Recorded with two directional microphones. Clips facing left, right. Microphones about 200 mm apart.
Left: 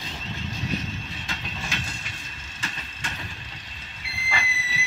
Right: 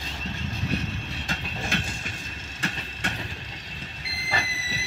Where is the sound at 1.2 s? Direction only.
50° right (ahead or behind).